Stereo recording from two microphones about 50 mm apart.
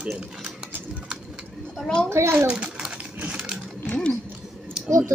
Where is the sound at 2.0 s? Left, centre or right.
Right.